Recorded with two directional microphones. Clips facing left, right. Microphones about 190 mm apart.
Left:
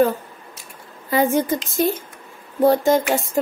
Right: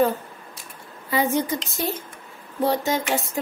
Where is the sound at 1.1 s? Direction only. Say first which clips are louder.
Left 4 dB; 50° left (ahead or behind).